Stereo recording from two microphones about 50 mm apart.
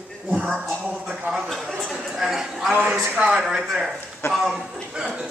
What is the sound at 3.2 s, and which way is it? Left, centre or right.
A man's voice, centre.